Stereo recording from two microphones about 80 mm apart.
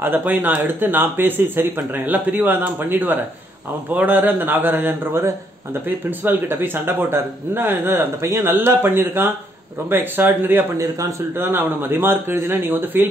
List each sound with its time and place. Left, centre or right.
0.0 s speech: right
10.8 s speech: right